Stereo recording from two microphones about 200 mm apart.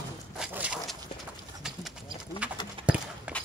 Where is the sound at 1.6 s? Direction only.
5° right (ahead or behind).